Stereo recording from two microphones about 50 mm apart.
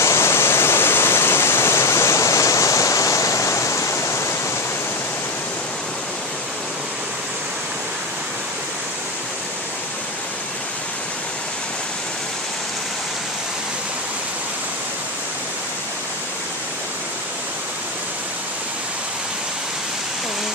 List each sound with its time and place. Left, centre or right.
0.0 s waterfall: left